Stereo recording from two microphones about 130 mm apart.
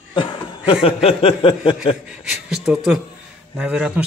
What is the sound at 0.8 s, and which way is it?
Speech, 50° left (ahead or behind).